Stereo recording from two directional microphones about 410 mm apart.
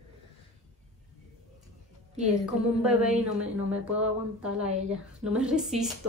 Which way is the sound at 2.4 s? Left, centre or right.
Centre.